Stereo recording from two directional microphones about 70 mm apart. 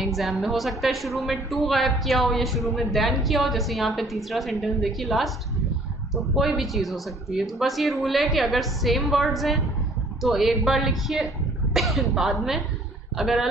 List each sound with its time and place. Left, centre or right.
0.0 s a woman's voice: centre
6.3 s a woman's voice: centre